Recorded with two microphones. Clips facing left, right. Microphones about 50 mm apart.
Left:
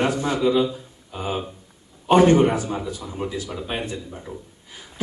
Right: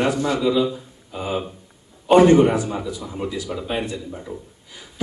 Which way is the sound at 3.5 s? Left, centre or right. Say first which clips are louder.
Right 3 dB; centre.